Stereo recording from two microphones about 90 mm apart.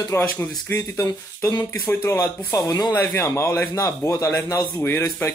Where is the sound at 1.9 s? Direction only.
25° left (ahead or behind).